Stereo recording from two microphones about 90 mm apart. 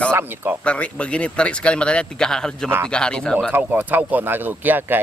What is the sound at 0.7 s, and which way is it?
Speech, 15° left (ahead or behind).